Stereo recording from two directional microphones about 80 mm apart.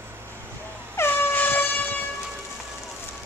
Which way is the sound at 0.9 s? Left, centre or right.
Left.